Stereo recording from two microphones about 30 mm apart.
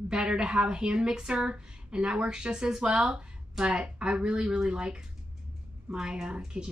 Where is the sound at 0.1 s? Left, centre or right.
Right.